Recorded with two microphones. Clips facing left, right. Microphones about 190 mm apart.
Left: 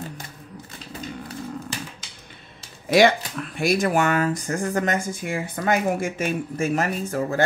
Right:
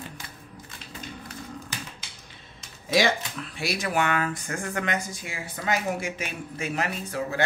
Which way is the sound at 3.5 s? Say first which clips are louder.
Left 7 dB; 50° left (ahead or behind).